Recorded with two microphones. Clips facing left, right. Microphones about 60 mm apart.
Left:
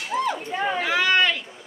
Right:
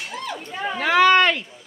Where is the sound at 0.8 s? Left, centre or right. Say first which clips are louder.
Right 7 dB; right.